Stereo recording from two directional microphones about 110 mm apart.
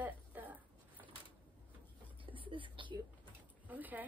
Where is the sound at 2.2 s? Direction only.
50° right (ahead or behind).